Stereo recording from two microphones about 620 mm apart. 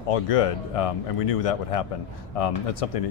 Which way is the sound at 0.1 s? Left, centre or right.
Left.